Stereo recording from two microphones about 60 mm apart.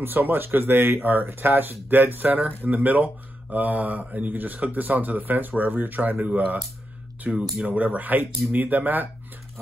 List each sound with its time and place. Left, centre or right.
0.0 s speech: right